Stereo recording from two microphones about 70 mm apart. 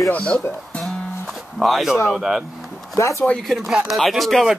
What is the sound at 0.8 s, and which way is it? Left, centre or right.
Music, centre.